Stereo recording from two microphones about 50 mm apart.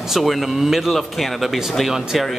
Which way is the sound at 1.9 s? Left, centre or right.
Centre.